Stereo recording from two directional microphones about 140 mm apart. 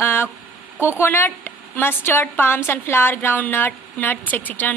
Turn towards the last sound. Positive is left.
turn(degrees=10)  # may be behind; listen again after turning